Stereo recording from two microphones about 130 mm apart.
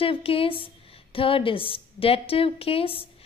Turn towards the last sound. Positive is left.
turn(degrees=45)  # may be behind; listen again after turning